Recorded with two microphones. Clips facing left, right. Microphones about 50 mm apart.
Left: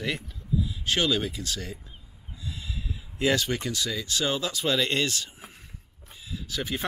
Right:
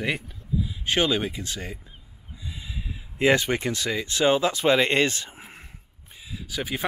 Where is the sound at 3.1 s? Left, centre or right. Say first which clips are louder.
Right 4 dB; right.